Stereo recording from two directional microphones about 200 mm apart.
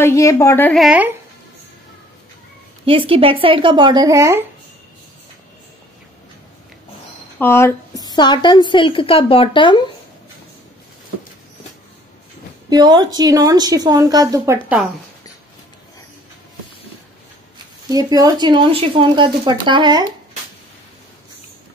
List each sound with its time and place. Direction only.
0.0 s a woman's voice: 15° left (ahead or behind)
0.8 s speech: 5° right (ahead or behind)
2.8 s a woman's voice: 25° right (ahead or behind)
7.3 s a woman's voice: 10° left (ahead or behind)
12.6 s a woman's voice: 20° right (ahead or behind)
17.8 s a woman's voice: 20° right (ahead or behind)